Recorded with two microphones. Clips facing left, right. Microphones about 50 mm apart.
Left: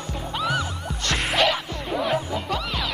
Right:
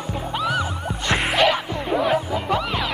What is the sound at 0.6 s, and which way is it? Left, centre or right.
Music, centre.